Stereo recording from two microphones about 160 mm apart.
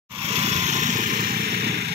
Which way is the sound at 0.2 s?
35° right (ahead or behind).